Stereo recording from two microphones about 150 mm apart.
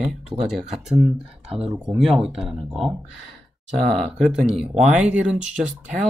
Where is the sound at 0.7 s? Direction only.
5° right (ahead or behind).